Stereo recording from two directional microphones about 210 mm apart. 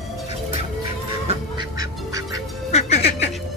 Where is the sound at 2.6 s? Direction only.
30° left (ahead or behind).